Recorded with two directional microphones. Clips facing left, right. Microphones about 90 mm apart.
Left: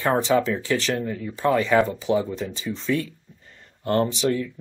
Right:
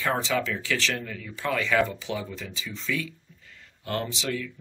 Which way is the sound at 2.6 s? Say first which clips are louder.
Left 6 dB; 45° left (ahead or behind).